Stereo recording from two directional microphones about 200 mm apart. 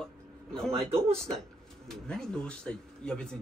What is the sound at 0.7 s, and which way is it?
Speech, 30° right (ahead or behind).